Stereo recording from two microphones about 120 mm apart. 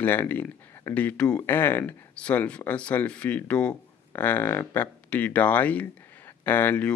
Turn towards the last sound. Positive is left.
turn(degrees=15)  # may be behind; listen again after turning